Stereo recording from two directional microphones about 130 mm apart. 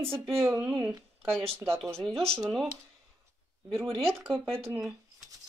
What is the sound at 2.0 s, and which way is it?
Speech, 5° left (ahead or behind).